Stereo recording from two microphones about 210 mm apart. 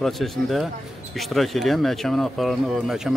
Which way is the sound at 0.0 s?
Centre (ahead or behind).